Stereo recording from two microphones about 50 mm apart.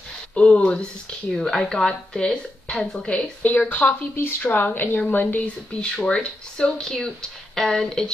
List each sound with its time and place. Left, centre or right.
0.3 s speech: centre
1.3 s a woman's voice: centre
3.4 s speech: left
5.8 s a woman's voice: left